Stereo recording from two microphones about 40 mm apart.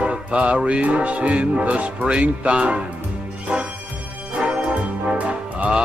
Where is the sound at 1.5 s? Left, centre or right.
Right.